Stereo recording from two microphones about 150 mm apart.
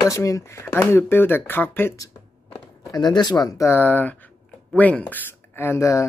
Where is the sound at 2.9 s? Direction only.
25° left (ahead or behind).